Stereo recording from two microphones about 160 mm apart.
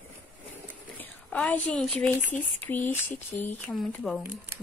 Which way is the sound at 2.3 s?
10° left (ahead or behind).